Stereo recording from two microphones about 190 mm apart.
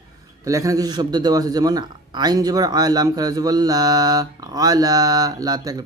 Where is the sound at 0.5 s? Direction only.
15° right (ahead or behind).